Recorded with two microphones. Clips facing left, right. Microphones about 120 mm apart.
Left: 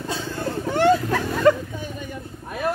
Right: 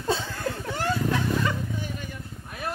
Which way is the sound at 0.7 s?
90° left.